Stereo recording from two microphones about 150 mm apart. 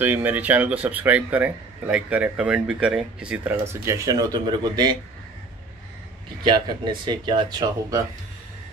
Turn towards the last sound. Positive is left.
turn(degrees=-25)  # may be behind; listen again after turning